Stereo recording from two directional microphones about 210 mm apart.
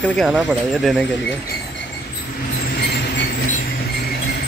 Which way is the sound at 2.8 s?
50° left (ahead or behind).